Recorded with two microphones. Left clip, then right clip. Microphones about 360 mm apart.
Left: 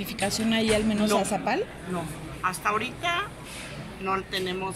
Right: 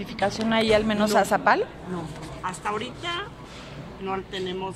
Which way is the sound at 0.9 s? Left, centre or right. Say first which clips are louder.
Right 4 dB; right.